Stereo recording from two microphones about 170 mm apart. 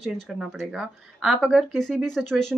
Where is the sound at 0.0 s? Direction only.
Centre (ahead or behind).